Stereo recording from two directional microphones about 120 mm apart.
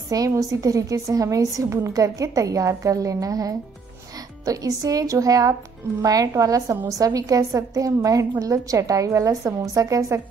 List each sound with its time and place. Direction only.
0.1 s a woman's voice: 30° right (ahead or behind)